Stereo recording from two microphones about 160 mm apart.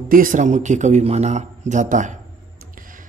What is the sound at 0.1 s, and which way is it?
A man's voice, 55° right (ahead or behind).